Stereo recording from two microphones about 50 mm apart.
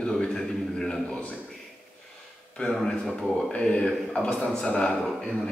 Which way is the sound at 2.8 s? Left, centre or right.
Centre.